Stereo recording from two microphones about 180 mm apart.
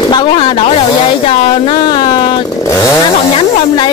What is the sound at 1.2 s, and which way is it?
Chainsaw, 30° left (ahead or behind).